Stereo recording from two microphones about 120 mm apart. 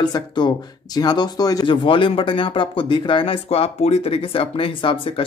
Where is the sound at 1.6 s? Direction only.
45° left (ahead or behind).